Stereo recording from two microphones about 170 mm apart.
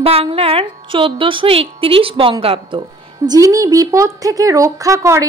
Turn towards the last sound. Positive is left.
turn(degrees=-15)  # may be behind; listen again after turning